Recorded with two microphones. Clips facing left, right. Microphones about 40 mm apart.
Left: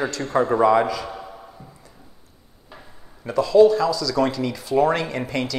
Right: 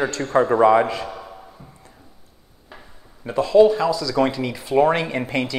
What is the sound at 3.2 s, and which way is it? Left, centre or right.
A man's voice, right.